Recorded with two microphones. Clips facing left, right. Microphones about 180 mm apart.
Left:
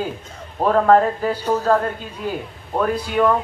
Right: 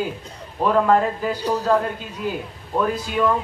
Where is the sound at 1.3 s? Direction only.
35° right (ahead or behind).